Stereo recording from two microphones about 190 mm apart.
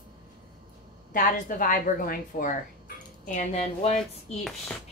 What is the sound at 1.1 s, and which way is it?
A woman's voice, 45° left (ahead or behind).